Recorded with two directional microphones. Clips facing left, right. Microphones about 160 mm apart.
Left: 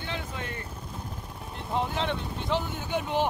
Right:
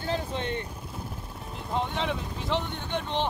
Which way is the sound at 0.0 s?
35° right (ahead or behind).